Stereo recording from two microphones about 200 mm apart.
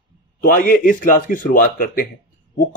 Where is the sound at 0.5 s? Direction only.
45° left (ahead or behind).